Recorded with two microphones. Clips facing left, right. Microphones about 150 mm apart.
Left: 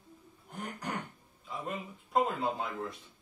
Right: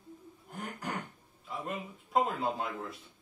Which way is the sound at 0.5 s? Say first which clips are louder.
Even; centre (ahead or behind).